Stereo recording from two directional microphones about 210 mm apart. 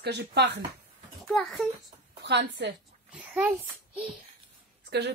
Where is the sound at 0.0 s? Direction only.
50° right (ahead or behind).